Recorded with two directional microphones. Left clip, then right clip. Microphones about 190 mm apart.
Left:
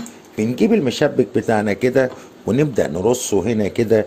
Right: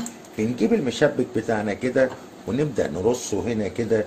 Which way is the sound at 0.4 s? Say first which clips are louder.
Left 5 dB; 45° left (ahead or behind).